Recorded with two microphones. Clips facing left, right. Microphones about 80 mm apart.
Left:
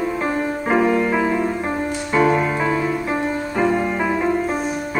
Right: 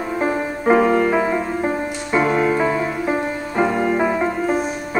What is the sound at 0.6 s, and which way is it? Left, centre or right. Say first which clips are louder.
Music: right 3 dB; right.